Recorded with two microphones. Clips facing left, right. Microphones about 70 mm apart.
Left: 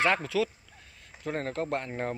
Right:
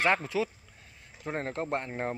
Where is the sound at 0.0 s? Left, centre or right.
Right.